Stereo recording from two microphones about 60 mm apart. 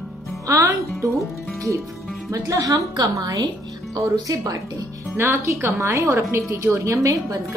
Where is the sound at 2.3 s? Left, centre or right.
Right.